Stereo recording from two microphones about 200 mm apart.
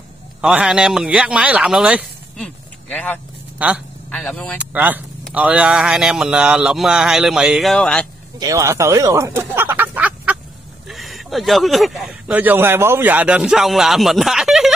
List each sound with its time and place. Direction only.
0.4 s speech: 5° right (ahead or behind)
2.4 s speech: 5° left (ahead or behind)
3.5 s a man's voice: 5° right (ahead or behind)
4.1 s speech: 5° left (ahead or behind)
4.6 s speech: 10° right (ahead or behind)
8.4 s a sound: 15° right (ahead or behind)
10.9 s speech: centre (ahead or behind)